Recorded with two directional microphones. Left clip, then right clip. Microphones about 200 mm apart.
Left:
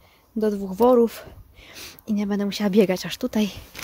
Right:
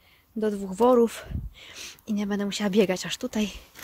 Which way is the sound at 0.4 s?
Centre (ahead or behind).